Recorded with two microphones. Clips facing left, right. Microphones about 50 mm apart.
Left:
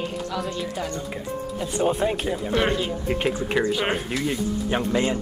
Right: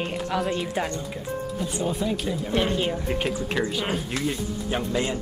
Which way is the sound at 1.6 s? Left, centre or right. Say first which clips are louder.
Left 6 dB; left.